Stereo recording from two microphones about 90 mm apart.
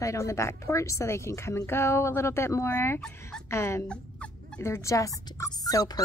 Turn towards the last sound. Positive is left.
turn(degrees=45)  # may be behind; listen again after turning